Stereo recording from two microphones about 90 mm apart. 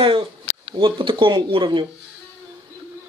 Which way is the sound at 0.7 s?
65° right (ahead or behind).